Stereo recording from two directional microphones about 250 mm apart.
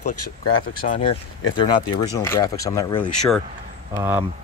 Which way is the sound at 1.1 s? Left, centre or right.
Centre.